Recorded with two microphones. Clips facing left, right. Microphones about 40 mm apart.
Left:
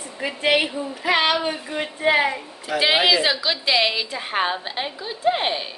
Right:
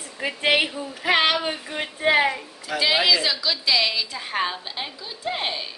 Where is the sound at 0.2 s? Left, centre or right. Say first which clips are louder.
Left 1 dB; centre.